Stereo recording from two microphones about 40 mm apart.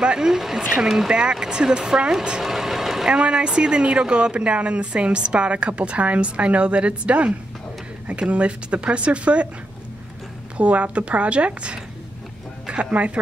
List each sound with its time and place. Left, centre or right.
0.0 s speech: right
0.3 s speech: centre
1.1 s speech: centre
2.4 s vehicle: centre
3.1 s speech: right
10.6 s speech: right